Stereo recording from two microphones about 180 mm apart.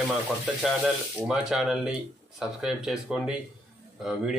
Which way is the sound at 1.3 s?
Centre (ahead or behind).